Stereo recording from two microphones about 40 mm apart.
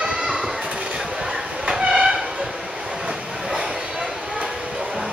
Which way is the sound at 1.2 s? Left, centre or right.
Centre.